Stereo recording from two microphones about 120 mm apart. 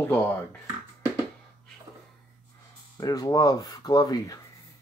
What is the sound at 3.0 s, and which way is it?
Speech, 30° left (ahead or behind).